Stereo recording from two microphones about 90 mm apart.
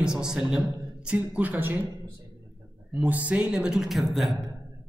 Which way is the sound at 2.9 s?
15° right (ahead or behind).